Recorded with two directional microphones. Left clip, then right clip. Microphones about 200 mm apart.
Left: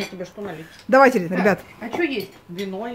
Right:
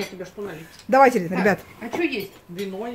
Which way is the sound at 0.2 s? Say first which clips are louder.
Left 3 dB; 45° left (ahead or behind).